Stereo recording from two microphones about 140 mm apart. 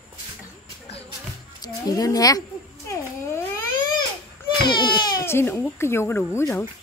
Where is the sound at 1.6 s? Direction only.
25° left (ahead or behind).